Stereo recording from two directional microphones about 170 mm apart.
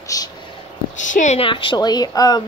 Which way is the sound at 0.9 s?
45° left (ahead or behind).